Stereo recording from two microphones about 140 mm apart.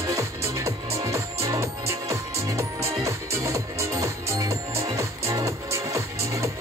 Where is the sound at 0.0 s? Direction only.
20° right (ahead or behind).